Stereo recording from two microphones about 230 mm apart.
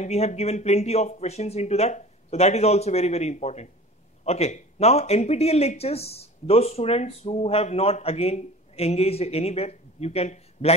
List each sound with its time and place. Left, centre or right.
0.0 s speech: left